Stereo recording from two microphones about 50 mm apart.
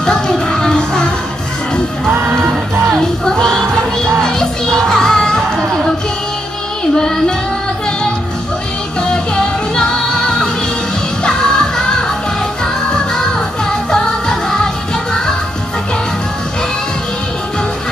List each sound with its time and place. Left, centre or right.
0.0 s music: centre
2.1 s music: right
3.0 s music: centre
6.8 s child singing: centre
9.0 s music: centre